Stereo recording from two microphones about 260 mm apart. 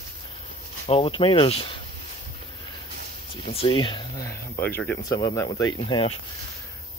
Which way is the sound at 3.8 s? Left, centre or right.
Centre.